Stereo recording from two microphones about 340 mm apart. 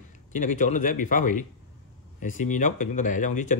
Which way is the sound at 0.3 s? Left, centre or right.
Left.